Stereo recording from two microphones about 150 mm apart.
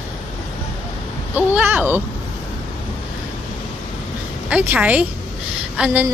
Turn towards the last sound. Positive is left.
turn(degrees=-5)  # may be behind; listen again after turning